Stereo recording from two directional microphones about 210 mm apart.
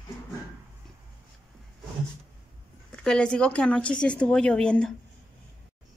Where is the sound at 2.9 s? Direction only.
5° left (ahead or behind).